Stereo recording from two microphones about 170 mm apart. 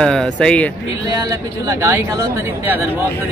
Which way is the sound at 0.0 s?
5° left (ahead or behind).